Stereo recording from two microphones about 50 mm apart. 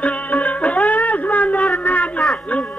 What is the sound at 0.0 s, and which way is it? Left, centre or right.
Music, left.